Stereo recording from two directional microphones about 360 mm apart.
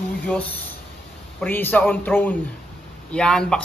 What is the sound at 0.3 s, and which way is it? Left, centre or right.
Speech, centre.